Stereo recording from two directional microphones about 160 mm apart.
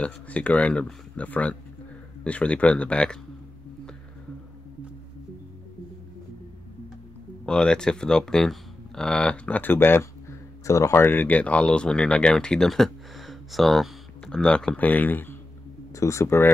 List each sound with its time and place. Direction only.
0.0 s speech: 10° left (ahead or behind)
7.4 s speech: 5° left (ahead or behind)